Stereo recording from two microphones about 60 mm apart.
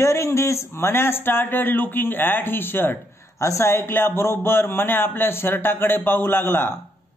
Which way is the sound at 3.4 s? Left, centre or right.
Left.